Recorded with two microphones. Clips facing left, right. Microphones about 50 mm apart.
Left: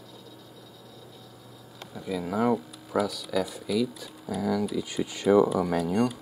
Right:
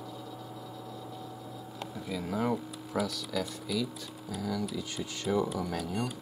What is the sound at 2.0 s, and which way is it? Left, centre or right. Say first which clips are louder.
Speech: left 6 dB; centre.